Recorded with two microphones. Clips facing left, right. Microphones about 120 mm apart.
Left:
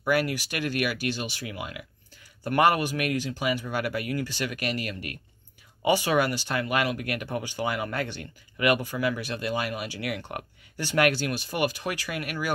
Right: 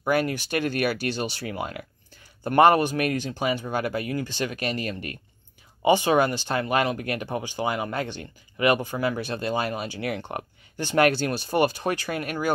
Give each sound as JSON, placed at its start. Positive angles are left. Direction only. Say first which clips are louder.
{"t": 0.0, "sound": "speech", "louder": "right 2 dB", "side_deg": -25}